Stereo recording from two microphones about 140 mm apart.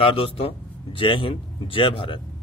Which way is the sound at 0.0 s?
40° left (ahead or behind).